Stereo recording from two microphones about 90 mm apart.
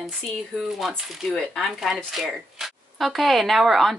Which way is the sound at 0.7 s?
Centre (ahead or behind).